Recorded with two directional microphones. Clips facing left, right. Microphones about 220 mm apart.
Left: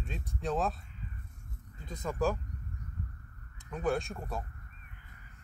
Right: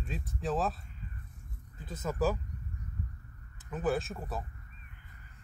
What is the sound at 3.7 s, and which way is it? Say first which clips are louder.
Speech: even; 5° right (ahead or behind).